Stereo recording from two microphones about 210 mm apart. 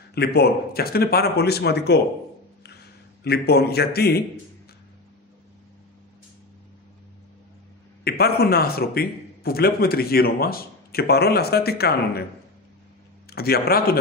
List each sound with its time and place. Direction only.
0.1 s a man's voice: 50° left (ahead or behind)
3.3 s a man's voice: 50° left (ahead or behind)
8.0 s a man's voice: 50° left (ahead or behind)
13.3 s a man's voice: 45° left (ahead or behind)